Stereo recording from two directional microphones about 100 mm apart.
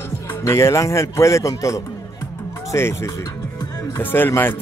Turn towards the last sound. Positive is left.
turn(degrees=20)  # may be behind; listen again after turning